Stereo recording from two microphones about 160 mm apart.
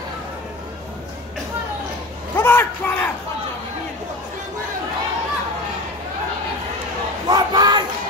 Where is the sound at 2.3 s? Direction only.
15° left (ahead or behind).